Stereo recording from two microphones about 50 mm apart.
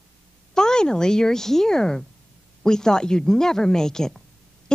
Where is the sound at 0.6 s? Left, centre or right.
Centre.